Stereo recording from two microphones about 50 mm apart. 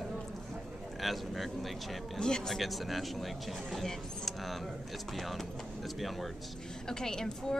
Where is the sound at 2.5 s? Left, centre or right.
Centre.